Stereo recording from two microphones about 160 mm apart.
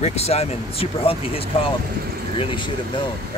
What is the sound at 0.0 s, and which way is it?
Speech, 40° left (ahead or behind).